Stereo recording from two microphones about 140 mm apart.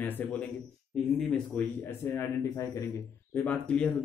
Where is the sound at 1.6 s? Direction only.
10° left (ahead or behind).